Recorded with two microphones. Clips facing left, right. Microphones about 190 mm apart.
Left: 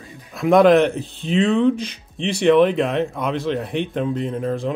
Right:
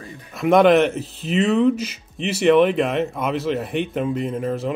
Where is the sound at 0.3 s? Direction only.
Centre (ahead or behind).